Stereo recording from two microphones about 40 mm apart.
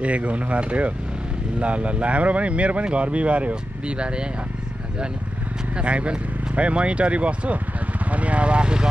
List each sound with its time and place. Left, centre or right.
0.0 s speech: right
5.8 s speech: right